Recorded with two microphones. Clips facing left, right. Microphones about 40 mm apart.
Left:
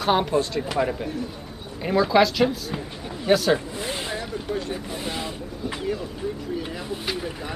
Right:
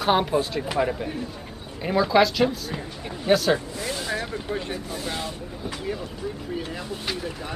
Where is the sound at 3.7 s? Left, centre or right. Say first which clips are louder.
Right 1 dB; left.